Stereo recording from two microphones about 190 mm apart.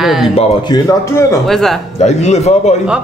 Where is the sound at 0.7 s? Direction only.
15° left (ahead or behind).